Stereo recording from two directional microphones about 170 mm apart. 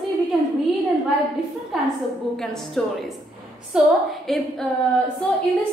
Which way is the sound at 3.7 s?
5° right (ahead or behind).